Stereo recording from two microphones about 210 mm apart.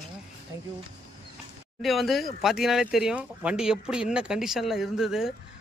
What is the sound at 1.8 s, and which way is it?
A man's voice, centre (ahead or behind).